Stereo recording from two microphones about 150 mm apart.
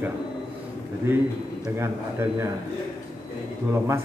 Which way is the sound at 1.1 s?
15° right (ahead or behind).